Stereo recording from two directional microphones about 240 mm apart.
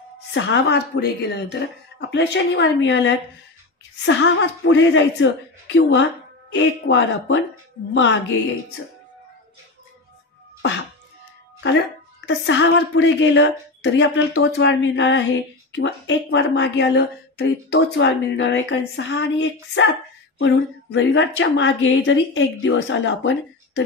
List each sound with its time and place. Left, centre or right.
0.3 s a woman's voice: left
12.3 s a woman's voice: left